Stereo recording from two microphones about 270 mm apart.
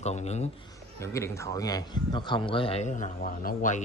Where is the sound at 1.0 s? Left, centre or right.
Centre.